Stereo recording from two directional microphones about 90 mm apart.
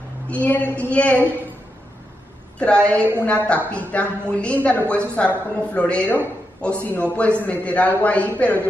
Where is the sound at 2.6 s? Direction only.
10° left (ahead or behind).